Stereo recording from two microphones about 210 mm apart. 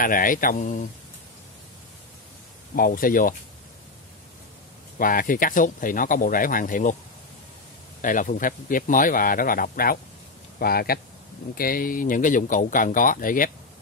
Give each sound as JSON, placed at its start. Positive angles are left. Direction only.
{"t": 0.0, "sound": "speech", "side_deg": 40}
{"t": 2.7, "sound": "speech", "side_deg": 40}
{"t": 4.9, "sound": "speech", "side_deg": 40}
{"t": 8.0, "sound": "a man's voice", "side_deg": 40}